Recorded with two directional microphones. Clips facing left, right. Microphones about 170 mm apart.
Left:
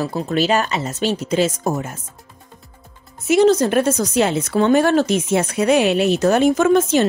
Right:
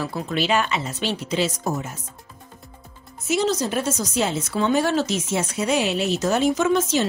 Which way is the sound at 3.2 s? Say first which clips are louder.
Left 8 dB; 55° left (ahead or behind).